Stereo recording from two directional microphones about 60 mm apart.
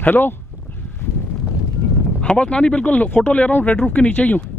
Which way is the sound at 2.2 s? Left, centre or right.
Centre.